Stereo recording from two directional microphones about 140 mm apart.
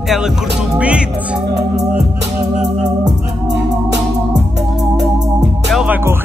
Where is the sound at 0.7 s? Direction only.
10° right (ahead or behind).